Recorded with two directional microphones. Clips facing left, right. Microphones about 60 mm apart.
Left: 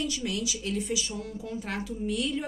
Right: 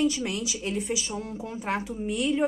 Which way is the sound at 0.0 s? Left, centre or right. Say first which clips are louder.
Right 5 dB; right.